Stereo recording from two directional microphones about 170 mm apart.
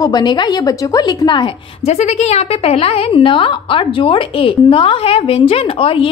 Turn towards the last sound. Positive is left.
turn(degrees=30)  # may be behind; listen again after turning